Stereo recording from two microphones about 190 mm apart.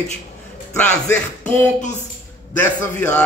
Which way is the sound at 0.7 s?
10° left (ahead or behind).